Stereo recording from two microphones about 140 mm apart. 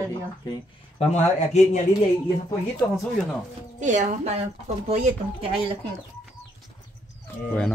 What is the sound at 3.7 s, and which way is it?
Speech, 60° right (ahead or behind).